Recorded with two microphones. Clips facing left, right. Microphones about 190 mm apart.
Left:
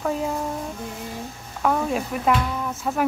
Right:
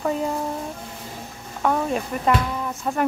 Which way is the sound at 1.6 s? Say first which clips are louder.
Even; centre (ahead or behind).